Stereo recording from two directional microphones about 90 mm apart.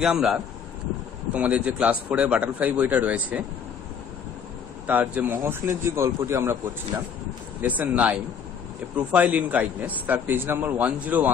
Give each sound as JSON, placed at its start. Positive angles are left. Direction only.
{"t": 0.0, "sound": "a man's voice", "side_deg": -5}
{"t": 4.8, "sound": "a man's voice", "side_deg": -20}
{"t": 7.8, "sound": "a man's voice", "side_deg": -15}